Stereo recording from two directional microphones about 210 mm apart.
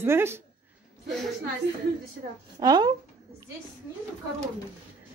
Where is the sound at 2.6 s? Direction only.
20° right (ahead or behind).